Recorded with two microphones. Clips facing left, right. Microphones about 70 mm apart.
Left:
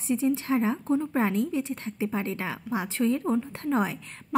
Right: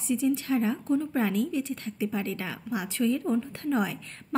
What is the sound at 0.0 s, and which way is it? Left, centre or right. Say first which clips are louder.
A woman's voice: left 1 dB; left.